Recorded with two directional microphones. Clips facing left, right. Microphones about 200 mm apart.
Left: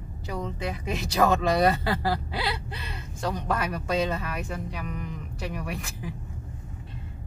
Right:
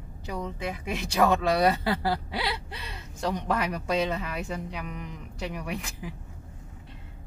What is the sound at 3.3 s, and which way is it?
Speech, 15° right (ahead or behind).